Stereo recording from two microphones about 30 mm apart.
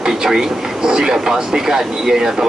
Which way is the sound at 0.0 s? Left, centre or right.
Right.